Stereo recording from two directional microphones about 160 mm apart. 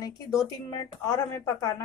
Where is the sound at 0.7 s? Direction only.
20° left (ahead or behind).